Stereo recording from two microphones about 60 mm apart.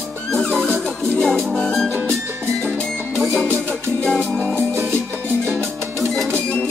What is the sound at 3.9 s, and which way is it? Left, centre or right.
Music, centre.